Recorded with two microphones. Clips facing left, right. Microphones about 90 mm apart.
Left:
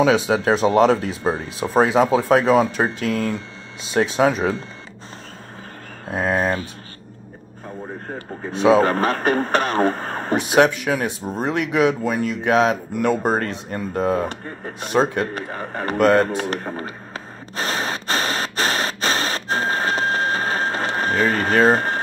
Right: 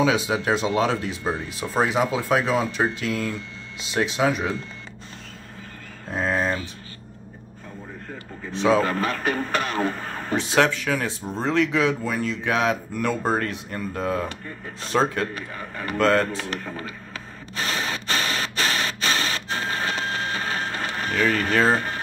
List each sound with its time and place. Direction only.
0.0 s speech: 25° left (ahead or behind)
4.2 s speech: 25° left (ahead or behind)
6.0 s speech: 15° left (ahead or behind)
8.5 s speech: 15° left (ahead or behind)
8.8 s speech: 45° left (ahead or behind)
10.3 s speech: 15° left (ahead or behind)
15.4 s a man's voice: 40° left (ahead or behind)
16.0 s speech: 20° left (ahead or behind)
16.4 s a sound: 40° left (ahead or behind)
21.7 s speech: 40° left (ahead or behind)